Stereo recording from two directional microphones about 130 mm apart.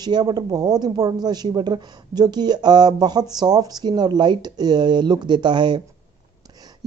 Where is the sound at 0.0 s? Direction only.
30° right (ahead or behind).